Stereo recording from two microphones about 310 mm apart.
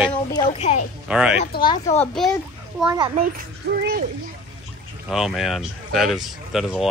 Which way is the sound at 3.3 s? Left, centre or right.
Right.